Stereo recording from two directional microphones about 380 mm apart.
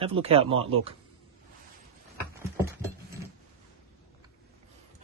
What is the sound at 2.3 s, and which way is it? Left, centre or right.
Dog, centre.